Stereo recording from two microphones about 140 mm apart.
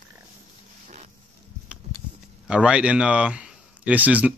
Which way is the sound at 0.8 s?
55° right (ahead or behind).